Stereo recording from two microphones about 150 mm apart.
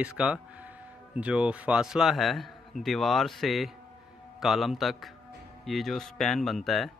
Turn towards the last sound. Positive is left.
turn(degrees=0)  # may be behind; listen again after turning